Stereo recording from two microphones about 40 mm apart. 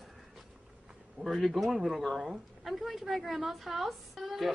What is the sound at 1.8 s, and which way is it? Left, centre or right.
A woman's voice, centre.